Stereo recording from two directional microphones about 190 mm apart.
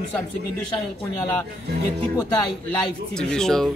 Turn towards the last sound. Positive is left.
turn(degrees=5)  # may be behind; listen again after turning